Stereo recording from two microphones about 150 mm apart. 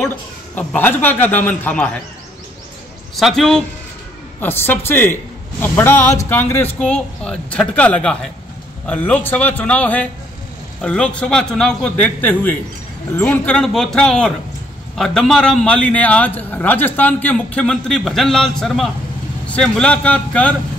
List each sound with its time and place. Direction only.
0.6 s a man's voice: 10° left (ahead or behind)
3.2 s speech: centre (ahead or behind)
4.4 s a man's voice: 15° left (ahead or behind)
13.6 s a man's voice: 5° left (ahead or behind)